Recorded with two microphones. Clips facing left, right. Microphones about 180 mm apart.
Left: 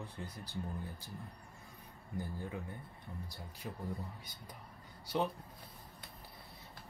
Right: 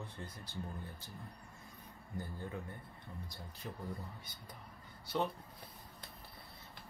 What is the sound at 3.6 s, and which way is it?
Speech, 5° left (ahead or behind).